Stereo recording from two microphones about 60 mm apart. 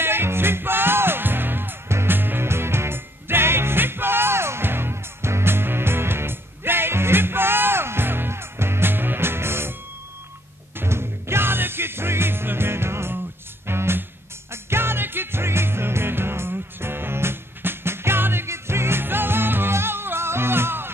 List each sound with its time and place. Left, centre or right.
0.0 s music: right
10.8 s music: right